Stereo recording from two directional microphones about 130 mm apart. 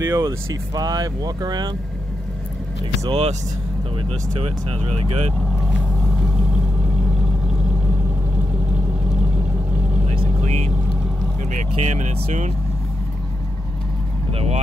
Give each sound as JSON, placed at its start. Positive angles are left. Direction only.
{"t": 0.0, "sound": "speech", "side_deg": -25}
{"t": 3.1, "sound": "speech", "side_deg": -50}
{"t": 10.0, "sound": "vehicle", "side_deg": -60}
{"t": 11.5, "sound": "speech", "side_deg": -70}
{"t": 14.3, "sound": "speech", "side_deg": -50}